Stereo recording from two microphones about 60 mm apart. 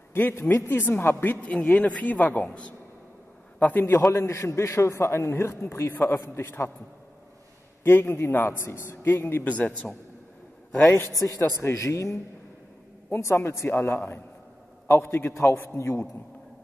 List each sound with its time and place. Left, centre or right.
0.1 s a man's voice: left
1.4 s a man's voice: left
4.0 s a man's voice: left
7.8 s a man's voice: left
9.5 s speech: left
11.1 s a man's voice: left
13.1 s a man's voice: left